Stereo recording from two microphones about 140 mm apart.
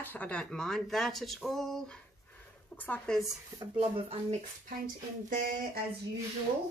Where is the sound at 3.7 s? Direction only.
45° right (ahead or behind).